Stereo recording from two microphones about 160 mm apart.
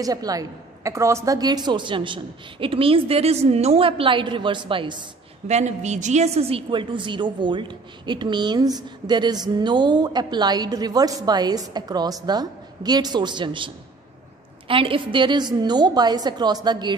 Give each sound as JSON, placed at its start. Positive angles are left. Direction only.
{"t": 0.0, "sound": "a woman's voice", "side_deg": -25}
{"t": 5.5, "sound": "a woman's voice", "side_deg": -45}
{"t": 14.7, "sound": "a woman's voice", "side_deg": -35}